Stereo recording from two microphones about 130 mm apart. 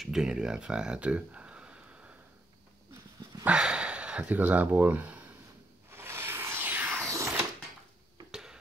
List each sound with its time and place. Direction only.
0.0 s speech: 5° right (ahead or behind)
3.4 s a sound: 10° right (ahead or behind); by 7.3 s 25° right (ahead or behind)
8.3 s tick-tock: 5° right (ahead or behind)